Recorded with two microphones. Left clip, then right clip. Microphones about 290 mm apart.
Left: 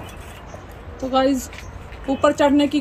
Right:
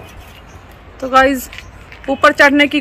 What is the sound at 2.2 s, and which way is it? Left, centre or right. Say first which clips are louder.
Speech: right 8 dB; right.